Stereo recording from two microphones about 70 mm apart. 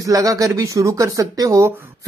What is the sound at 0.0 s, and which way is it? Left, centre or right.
Speech, right.